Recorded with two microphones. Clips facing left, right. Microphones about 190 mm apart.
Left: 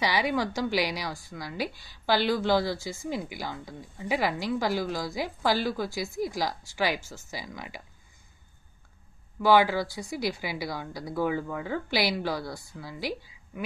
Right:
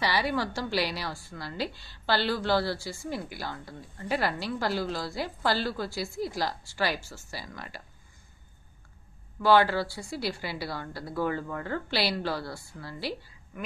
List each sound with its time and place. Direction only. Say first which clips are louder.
0.0 s a woman's voice: left 1 dB; 15° left (ahead or behind)
9.4 s a woman's voice: left 1 dB; 15° left (ahead or behind)